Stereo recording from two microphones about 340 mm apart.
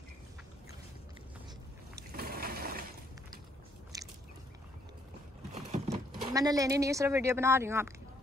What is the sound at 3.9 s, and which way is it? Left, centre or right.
Biting, centre.